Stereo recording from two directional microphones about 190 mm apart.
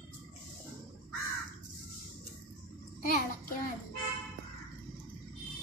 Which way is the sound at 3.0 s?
45° left (ahead or behind).